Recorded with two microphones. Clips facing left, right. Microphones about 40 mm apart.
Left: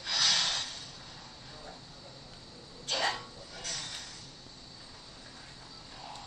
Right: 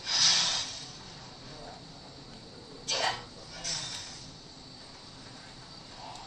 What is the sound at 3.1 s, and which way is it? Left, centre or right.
Bow-wow, centre.